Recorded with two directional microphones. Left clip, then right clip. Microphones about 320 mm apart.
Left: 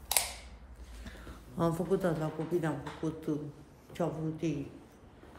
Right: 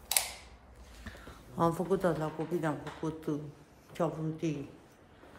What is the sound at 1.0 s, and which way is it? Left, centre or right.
Speech, centre.